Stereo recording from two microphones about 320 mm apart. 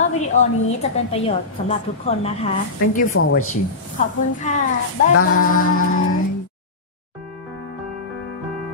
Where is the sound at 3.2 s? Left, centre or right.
Left.